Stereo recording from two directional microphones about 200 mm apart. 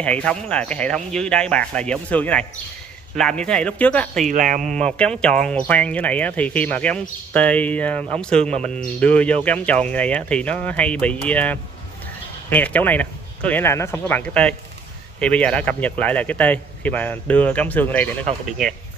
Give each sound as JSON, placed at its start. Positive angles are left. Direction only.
{"t": 0.0, "sound": "speech", "side_deg": 5}
{"t": 4.3, "sound": "speech", "side_deg": -40}
{"t": 4.8, "sound": "speech", "side_deg": 5}